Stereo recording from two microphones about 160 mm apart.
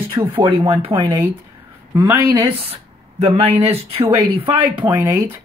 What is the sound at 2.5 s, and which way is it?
Speech, 35° right (ahead or behind).